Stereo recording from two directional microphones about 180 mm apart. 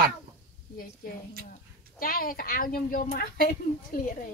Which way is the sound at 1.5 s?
55° left (ahead or behind).